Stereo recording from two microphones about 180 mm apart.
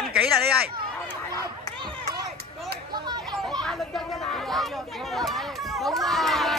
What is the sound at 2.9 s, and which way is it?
Speech, 25° right (ahead or behind).